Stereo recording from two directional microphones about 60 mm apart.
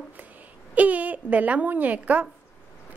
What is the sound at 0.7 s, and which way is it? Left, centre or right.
A woman's voice, right.